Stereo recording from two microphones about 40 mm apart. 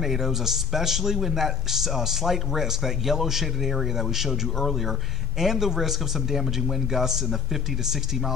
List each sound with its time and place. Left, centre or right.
0.0 s a man's voice: centre